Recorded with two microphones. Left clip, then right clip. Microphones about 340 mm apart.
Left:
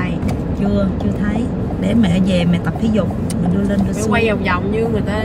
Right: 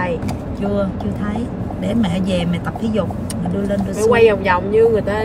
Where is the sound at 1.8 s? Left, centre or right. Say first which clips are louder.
Left 3 dB; centre.